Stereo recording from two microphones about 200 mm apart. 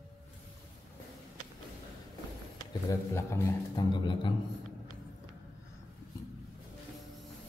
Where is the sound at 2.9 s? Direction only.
15° left (ahead or behind).